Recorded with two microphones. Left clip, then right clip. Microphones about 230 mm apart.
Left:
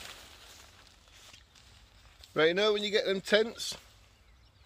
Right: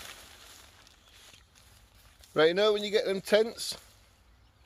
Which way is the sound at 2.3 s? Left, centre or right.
Right.